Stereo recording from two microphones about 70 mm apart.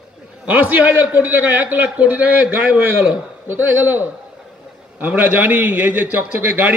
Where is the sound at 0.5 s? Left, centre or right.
Right.